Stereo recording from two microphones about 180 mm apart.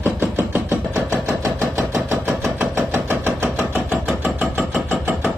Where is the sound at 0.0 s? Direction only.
10° right (ahead or behind).